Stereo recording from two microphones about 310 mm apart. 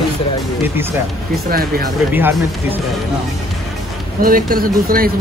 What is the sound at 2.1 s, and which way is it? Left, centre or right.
Speech, centre.